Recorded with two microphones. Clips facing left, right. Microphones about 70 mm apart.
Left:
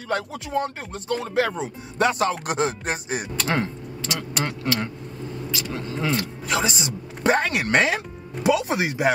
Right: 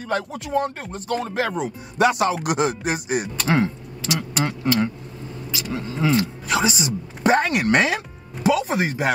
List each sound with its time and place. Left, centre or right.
0.1 s speech: centre